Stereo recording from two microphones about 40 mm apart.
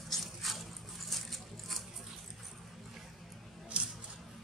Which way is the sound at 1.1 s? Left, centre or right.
Centre.